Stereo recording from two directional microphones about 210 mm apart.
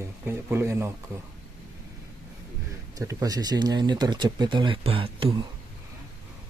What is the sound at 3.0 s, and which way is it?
Speech, 15° right (ahead or behind).